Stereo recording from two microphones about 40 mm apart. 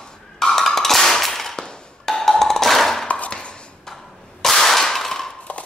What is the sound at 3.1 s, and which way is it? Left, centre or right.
Chopping, left.